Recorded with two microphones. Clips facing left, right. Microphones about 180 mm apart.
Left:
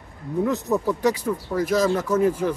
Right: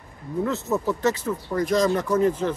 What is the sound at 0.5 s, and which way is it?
Speech, 15° left (ahead or behind).